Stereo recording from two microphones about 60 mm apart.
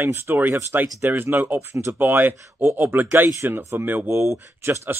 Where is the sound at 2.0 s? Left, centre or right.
Right.